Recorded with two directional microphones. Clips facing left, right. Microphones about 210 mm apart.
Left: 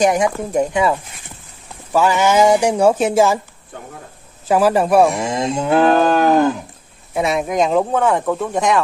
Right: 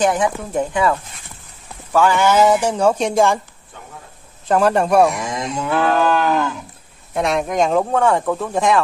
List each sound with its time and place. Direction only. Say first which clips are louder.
0.0 s speech: left 2 dB; 10° left (ahead or behind)
4.5 s speech: left 1 dB; 5° left (ahead or behind)
5.1 s cattle: left 4 dB; 25° left (ahead or behind)
7.2 s speech: left 1 dB; 5° left (ahead or behind)